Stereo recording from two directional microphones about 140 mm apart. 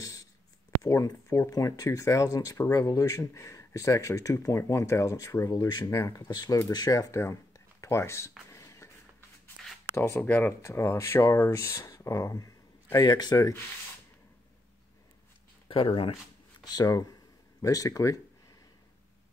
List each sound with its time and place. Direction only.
0.0 s a sound: 25° left (ahead or behind)
0.8 s speech: 20° left (ahead or behind)
6.7 s a sound: 30° left (ahead or behind)
9.9 s speech: 20° left (ahead or behind)
15.7 s speech: 40° left (ahead or behind)
16.6 s speech: 25° left (ahead or behind)